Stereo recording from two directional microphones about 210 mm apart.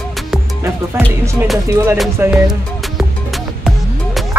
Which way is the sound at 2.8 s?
Centre (ahead or behind).